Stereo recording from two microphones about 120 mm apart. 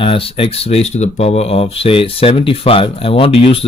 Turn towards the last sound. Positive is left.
turn(degrees=50)  # may be behind; listen again after turning